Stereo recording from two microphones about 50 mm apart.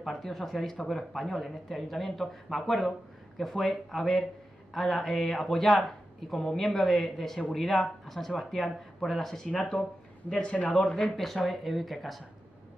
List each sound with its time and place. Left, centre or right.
0.0 s speech: centre; by 10.7 s left
11.0 s speech: centre